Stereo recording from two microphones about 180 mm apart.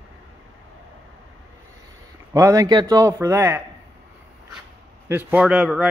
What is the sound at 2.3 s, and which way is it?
A man's voice, 20° right (ahead or behind).